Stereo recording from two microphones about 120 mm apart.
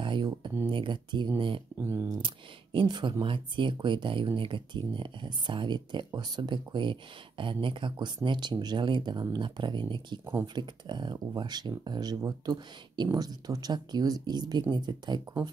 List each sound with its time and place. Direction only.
0.0 s a sound: 40° right (ahead or behind)
0.7 s speech: 40° right (ahead or behind)
1.8 s speech: 20° right (ahead or behind)
2.2 s speech: 45° right (ahead or behind)